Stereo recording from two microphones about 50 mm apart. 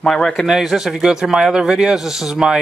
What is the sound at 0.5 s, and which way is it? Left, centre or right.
Speech, centre.